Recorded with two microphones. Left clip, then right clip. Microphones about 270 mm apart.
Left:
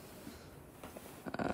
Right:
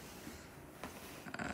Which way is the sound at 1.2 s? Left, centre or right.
Centre.